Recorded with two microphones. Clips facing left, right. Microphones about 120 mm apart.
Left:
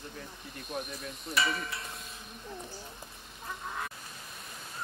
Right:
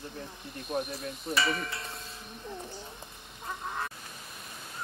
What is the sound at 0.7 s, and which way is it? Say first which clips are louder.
Cricket: right 5 dB; 30° right (ahead or behind).